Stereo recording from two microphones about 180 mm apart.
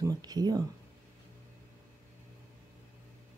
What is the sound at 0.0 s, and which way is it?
Speech, 20° right (ahead or behind).